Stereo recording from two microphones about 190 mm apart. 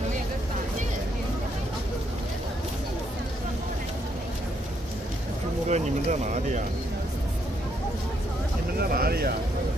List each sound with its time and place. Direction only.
5.7 s speech: 40° right (ahead or behind)
8.7 s speech: 55° right (ahead or behind)